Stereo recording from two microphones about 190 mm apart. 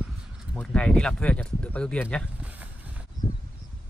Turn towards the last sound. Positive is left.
turn(degrees=25)  # may be behind; listen again after turning